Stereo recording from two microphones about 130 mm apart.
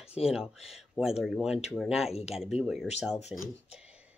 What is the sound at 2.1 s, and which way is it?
Speech, 50° left (ahead or behind).